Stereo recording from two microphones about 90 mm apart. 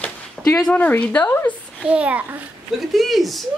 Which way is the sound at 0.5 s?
10° left (ahead or behind).